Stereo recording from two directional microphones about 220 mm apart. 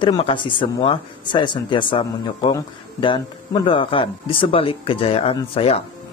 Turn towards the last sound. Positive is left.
turn(degrees=25)  # may be behind; listen again after turning